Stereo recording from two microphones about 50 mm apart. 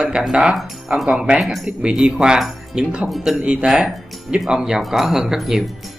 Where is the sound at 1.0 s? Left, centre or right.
Centre.